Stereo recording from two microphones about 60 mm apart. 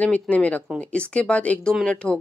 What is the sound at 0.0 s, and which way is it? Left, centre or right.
Speech, left.